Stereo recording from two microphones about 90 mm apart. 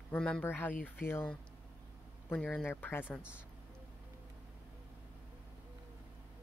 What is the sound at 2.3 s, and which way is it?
Speech, 15° left (ahead or behind).